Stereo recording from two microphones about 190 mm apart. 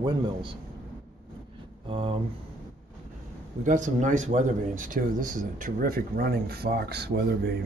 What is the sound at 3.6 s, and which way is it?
Speech, 40° right (ahead or behind).